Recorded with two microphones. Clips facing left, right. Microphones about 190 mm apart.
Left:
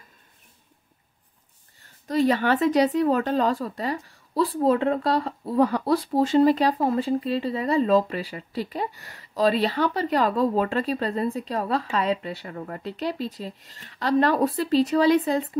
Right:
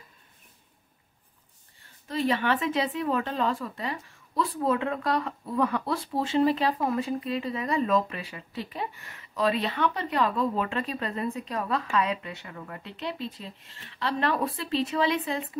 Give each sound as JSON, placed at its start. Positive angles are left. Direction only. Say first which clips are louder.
{"t": 1.8, "sound": "a woman's voice", "louder": "left 7 dB", "side_deg": 40}